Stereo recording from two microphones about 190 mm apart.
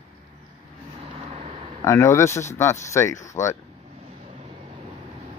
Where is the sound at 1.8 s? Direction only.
15° left (ahead or behind).